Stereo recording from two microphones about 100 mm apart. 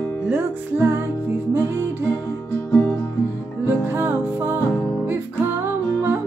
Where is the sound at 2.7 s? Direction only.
20° left (ahead or behind).